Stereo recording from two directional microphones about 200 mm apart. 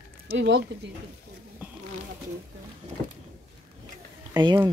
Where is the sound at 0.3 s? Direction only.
65° right (ahead or behind).